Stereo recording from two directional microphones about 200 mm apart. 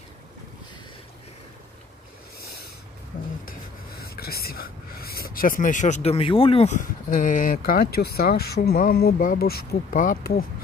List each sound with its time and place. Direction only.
3.4 s speech: 50° left (ahead or behind)